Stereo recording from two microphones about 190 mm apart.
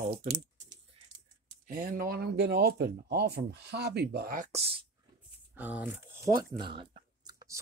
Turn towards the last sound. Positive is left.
turn(degrees=-20)  # may be behind; listen again after turning